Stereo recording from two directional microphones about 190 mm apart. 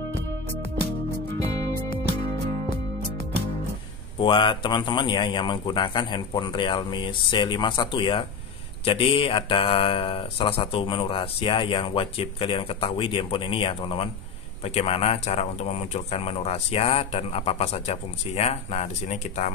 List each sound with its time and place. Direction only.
4.2 s speech: 25° left (ahead or behind)